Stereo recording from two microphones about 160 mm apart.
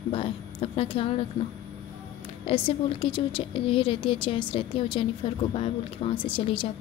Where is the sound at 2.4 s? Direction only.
35° left (ahead or behind).